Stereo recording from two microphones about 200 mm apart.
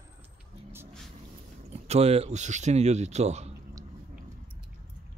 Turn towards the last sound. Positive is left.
turn(degrees=-35)  # may be behind; listen again after turning